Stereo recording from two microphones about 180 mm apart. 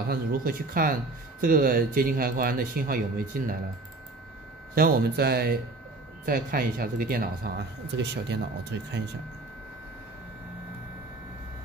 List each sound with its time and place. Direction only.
0.1 s speech: 55° right (ahead or behind)
4.7 s speech: 60° right (ahead or behind)